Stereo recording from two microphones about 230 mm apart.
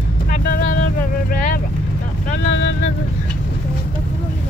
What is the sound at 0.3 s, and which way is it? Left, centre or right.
Vehicle, left.